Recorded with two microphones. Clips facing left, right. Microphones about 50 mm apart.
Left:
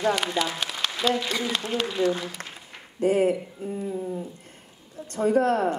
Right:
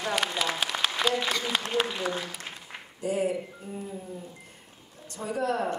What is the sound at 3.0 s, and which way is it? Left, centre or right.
Speech, left.